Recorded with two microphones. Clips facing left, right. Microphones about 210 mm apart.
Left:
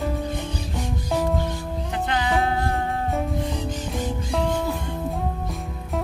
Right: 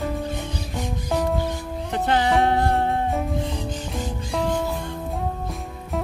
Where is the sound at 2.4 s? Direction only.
35° right (ahead or behind).